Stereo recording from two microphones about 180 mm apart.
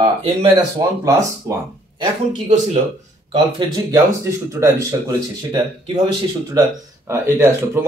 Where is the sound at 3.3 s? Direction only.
25° right (ahead or behind).